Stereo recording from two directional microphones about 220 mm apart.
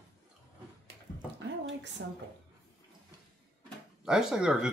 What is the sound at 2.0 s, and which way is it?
Speech, 55° right (ahead or behind).